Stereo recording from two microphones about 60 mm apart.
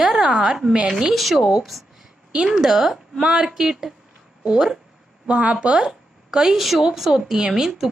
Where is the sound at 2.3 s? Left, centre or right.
Centre.